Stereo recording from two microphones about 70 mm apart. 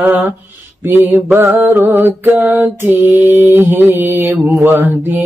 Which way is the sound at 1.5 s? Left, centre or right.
Right.